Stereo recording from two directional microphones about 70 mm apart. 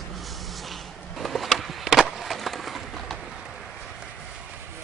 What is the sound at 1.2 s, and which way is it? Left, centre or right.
Skateboard, centre.